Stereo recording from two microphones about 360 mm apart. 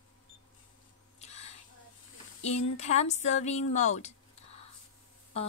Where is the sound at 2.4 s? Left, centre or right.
Centre.